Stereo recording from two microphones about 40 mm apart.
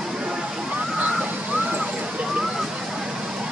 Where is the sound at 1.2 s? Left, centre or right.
Right.